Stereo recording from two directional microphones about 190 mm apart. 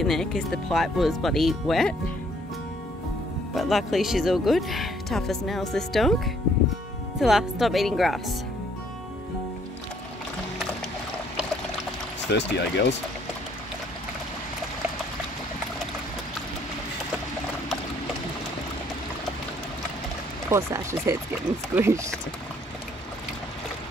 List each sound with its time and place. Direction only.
0.0 s speech: centre (ahead or behind)
3.5 s speech: centre (ahead or behind)
12.3 s speech: 65° left (ahead or behind)
20.4 s speech: 15° right (ahead or behind)